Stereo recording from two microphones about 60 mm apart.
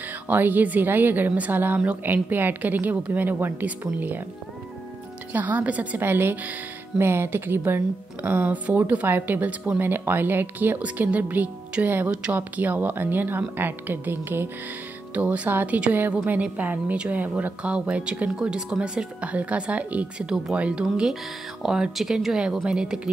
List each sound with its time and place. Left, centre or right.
0.3 s speech: right
5.3 s speech: right
12.1 s speech: centre
12.4 s speech: right
15.1 s speech: right
21.6 s speech: centre